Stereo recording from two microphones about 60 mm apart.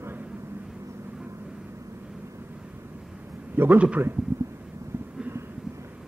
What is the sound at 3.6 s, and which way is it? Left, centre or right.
Speech, right.